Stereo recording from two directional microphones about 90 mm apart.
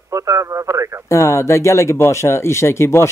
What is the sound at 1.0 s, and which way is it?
Speech, 30° left (ahead or behind).